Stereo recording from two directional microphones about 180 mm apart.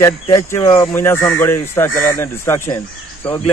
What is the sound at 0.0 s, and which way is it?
Speech, 15° left (ahead or behind).